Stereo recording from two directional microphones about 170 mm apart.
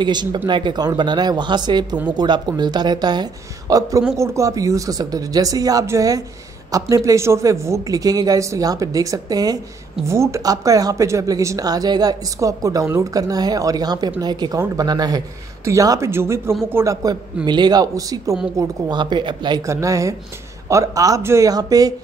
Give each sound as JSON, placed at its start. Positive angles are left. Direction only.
{"t": 0.0, "sound": "a man's voice", "side_deg": -25}